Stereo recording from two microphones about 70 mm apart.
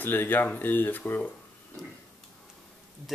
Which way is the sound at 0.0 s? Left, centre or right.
Left.